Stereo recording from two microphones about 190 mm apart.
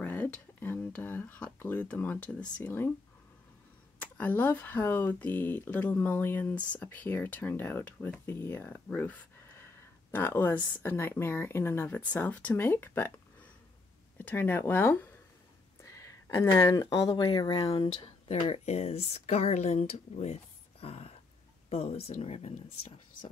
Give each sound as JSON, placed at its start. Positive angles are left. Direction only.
{"t": 0.0, "sound": "speech", "side_deg": 10}
{"t": 4.0, "sound": "speech", "side_deg": 10}
{"t": 20.8, "sound": "a sound", "side_deg": 35}
{"t": 21.6, "sound": "speech", "side_deg": 35}